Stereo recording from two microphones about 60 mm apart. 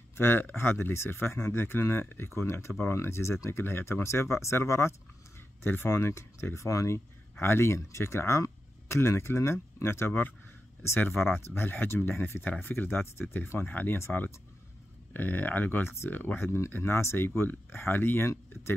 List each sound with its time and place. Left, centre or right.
0.2 s speech: left
5.6 s speech: left
7.3 s speech: left
14.1 s speech: left
15.1 s speech: left
16.5 s speech: left